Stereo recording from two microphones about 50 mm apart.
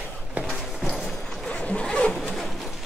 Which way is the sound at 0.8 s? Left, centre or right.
Centre.